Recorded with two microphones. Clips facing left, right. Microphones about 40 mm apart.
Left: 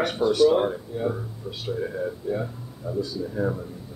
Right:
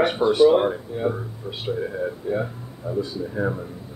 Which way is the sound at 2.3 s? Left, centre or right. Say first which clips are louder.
Right 3 dB; right.